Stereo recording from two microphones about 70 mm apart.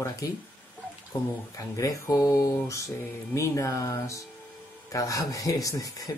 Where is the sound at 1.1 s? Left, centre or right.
Left.